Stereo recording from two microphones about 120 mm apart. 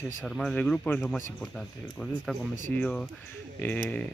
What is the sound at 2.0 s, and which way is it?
Speech, 15° left (ahead or behind).